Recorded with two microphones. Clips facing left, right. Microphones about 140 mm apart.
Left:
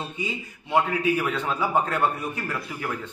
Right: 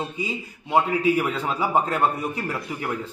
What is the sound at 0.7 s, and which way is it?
Speech, 15° right (ahead or behind).